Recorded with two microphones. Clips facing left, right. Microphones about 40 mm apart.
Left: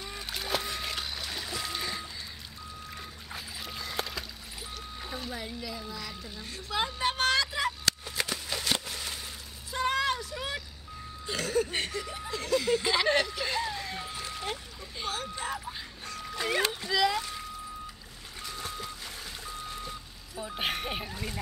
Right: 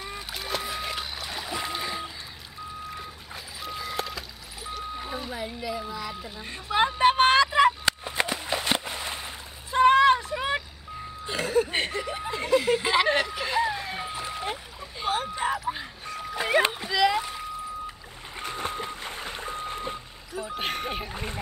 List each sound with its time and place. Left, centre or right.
0.0 s splash: centre
2.9 s boat: centre
4.6 s music: centre
6.3 s a sound: right
11.2 s ice cream truck: right
11.7 s snicker: right
15.7 s music: right
16.3 s splash: right
16.9 s rowboat: centre
18.3 s boat: right
20.5 s music: centre
21.1 s speech: right